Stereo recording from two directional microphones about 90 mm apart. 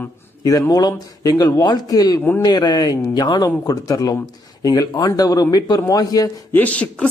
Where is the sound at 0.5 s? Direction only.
45° left (ahead or behind).